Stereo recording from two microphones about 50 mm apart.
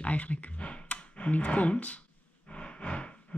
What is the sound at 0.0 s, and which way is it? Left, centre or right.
Speech, left.